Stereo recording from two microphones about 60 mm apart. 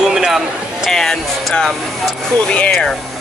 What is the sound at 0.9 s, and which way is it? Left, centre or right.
Speech, centre.